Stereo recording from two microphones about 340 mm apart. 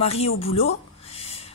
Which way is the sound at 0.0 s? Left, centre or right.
Centre.